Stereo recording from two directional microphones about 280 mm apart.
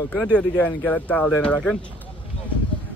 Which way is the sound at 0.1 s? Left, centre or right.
Centre.